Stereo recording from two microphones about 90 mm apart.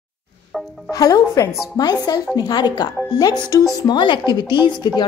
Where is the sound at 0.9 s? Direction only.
40° left (ahead or behind).